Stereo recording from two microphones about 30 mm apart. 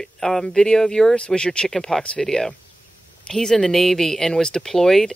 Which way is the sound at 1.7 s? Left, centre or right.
Centre.